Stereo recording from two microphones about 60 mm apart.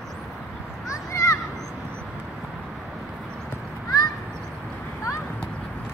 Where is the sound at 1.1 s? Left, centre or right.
Left.